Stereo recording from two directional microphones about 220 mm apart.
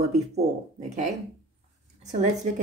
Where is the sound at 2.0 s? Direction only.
35° right (ahead or behind).